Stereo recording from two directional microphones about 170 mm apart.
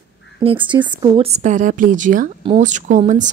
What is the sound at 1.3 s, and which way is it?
A woman's voice, 45° right (ahead or behind).